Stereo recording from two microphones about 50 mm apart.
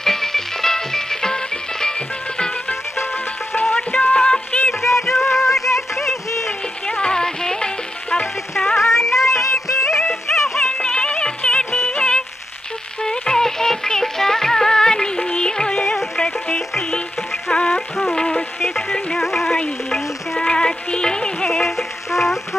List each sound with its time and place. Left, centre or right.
0.0 s music: centre
3.7 s music: left
5.0 s music: centre
6.9 s music: centre
8.5 s music: centre
9.4 s music: left
10.3 s music: centre
19.2 s music: centre
19.9 s music: centre
21.6 s frying: centre